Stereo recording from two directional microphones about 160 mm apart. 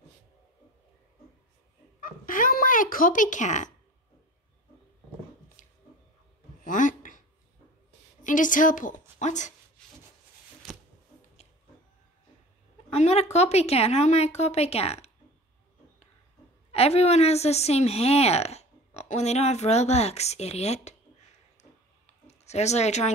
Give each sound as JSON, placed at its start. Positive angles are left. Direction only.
{"t": 2.0, "sound": "a sound", "side_deg": 60}
{"t": 5.6, "sound": "a sound", "side_deg": 50}
{"t": 8.2, "sound": "a woman's voice", "side_deg": 55}
{"t": 10.7, "sound": "shuffling cards", "side_deg": -5}
{"t": 12.9, "sound": "a woman's voice", "side_deg": 45}
{"t": 16.7, "sound": "a woman's voice", "side_deg": 40}
{"t": 22.3, "sound": "speech", "side_deg": 45}